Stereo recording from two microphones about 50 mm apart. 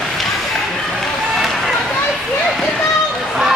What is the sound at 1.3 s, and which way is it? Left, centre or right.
Run, centre.